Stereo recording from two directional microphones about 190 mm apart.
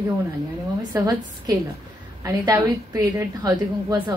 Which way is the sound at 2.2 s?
20° right (ahead or behind).